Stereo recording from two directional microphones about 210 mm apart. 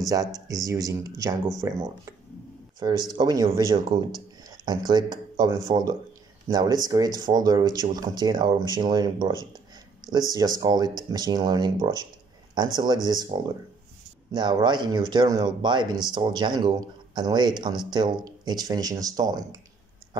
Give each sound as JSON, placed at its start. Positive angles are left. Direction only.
{"t": 0.0, "sound": "speech", "side_deg": -15}